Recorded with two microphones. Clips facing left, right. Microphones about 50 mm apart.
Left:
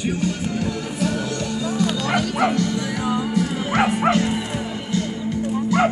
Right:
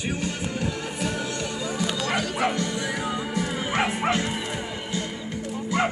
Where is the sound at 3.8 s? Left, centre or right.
Centre.